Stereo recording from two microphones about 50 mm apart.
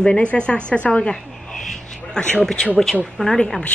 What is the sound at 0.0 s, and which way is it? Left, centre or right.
Speech, left.